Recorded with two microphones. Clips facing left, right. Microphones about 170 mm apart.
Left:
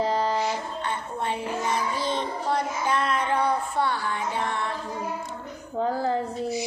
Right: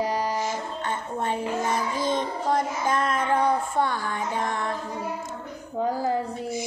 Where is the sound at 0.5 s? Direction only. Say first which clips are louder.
Even; 45° right (ahead or behind).